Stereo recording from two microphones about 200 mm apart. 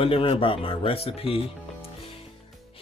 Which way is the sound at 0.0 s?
25° left (ahead or behind).